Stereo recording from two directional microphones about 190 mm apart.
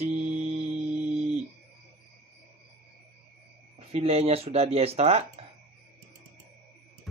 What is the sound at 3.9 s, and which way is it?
Speech, 30° right (ahead or behind).